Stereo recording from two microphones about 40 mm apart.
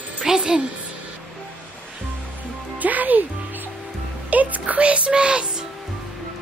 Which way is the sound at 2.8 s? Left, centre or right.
Right.